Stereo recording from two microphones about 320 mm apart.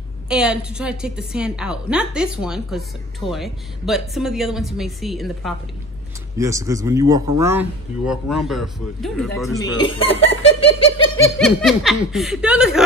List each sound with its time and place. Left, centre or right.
0.3 s a woman's voice: centre
9.6 s speech: centre
11.3 s a woman's voice: centre